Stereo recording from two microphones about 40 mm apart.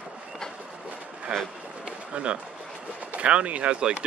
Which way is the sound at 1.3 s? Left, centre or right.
Centre.